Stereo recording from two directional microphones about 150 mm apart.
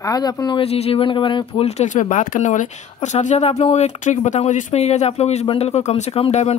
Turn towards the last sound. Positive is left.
turn(degrees=45)  # may be behind; listen again after turning